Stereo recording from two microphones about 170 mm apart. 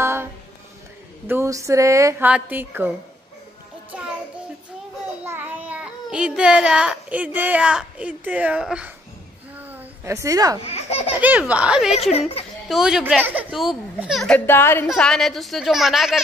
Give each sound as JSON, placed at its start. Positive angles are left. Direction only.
{"t": 0.0, "sound": "music", "side_deg": -15}
{"t": 1.2, "sound": "speech", "side_deg": -15}
{"t": 5.2, "sound": "a child's voice", "side_deg": -10}
{"t": 9.6, "sound": "a sound", "side_deg": -10}
{"t": 10.6, "sound": "baby laughter", "side_deg": 35}
{"t": 11.1, "sound": "speech", "side_deg": -10}
{"t": 11.9, "sound": "speech", "side_deg": 35}
{"t": 12.6, "sound": "a child's voice", "side_deg": -5}